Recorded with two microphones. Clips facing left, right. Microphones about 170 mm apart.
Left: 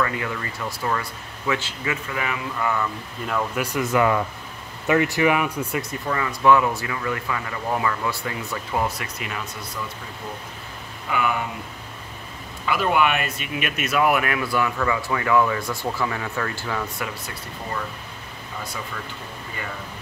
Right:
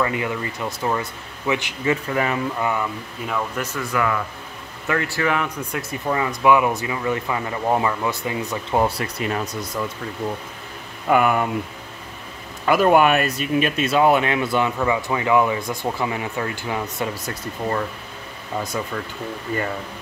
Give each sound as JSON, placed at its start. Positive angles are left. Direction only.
{"t": 0.0, "sound": "speech", "side_deg": -20}
{"t": 1.9, "sound": "speech", "side_deg": -40}
{"t": 2.6, "sound": "speech", "side_deg": -15}
{"t": 3.3, "sound": "speech", "side_deg": 5}
{"t": 6.0, "sound": "speech", "side_deg": -20}
{"t": 8.8, "sound": "speech", "side_deg": -35}
{"t": 11.1, "sound": "speech", "side_deg": -50}
{"t": 12.6, "sound": "speech", "side_deg": -45}